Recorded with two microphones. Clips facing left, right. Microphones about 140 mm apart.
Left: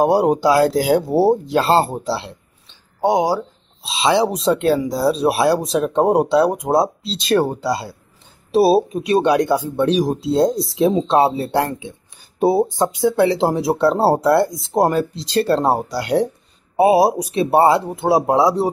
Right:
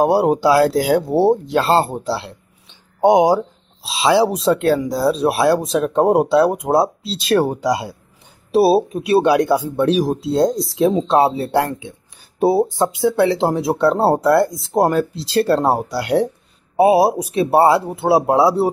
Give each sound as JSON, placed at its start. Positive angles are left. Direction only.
{"t": 0.0, "sound": "speech", "side_deg": 0}
{"t": 3.0, "sound": "speech", "side_deg": -20}
{"t": 3.8, "sound": "speech", "side_deg": -5}
{"t": 7.6, "sound": "speech", "side_deg": -15}
{"t": 8.5, "sound": "speech", "side_deg": -5}